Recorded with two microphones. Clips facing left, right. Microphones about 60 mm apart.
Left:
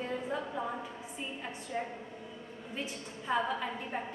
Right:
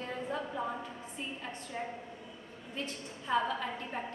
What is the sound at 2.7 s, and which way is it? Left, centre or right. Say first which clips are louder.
A woman's voice: even; centre.